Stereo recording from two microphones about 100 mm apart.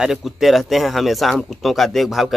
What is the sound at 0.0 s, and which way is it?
Speech, 5° right (ahead or behind).